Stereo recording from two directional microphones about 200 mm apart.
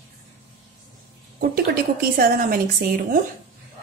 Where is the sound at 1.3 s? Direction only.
50° right (ahead or behind).